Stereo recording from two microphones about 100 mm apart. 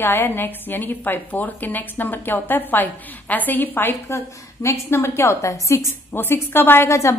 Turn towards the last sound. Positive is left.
turn(degrees=30)  # may be behind; listen again after turning